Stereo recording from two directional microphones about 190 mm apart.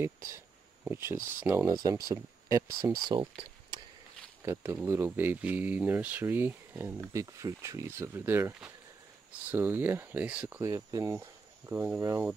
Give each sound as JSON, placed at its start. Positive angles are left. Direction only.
{"t": 0.0, "sound": "speech", "side_deg": -15}
{"t": 4.4, "sound": "speech", "side_deg": -15}
{"t": 10.7, "sound": "speech", "side_deg": -20}